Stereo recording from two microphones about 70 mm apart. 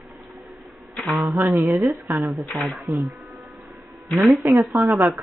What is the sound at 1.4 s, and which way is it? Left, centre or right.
Speech, right.